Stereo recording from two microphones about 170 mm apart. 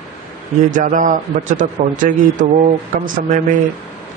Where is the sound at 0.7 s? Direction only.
50° right (ahead or behind).